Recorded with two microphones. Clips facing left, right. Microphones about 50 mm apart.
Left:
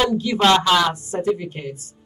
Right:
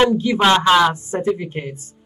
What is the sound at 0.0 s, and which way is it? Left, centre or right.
A man's voice, right.